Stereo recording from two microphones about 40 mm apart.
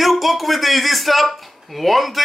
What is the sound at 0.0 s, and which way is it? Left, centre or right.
Speech, centre.